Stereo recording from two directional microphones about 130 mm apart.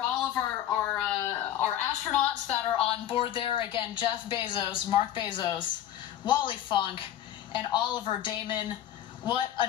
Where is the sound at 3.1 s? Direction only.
40° left (ahead or behind).